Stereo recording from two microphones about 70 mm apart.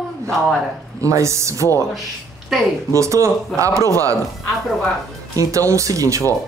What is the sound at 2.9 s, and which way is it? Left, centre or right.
Speech, right.